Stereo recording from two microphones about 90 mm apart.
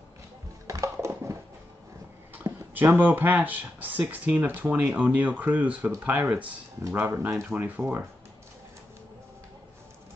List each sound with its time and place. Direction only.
0.7 s a sound: 35° right (ahead or behind)
2.7 s speech: 20° right (ahead or behind)
6.8 s speech: 30° right (ahead or behind)